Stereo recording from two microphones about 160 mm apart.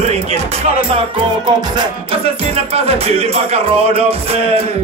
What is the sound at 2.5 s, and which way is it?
Music, 40° right (ahead or behind).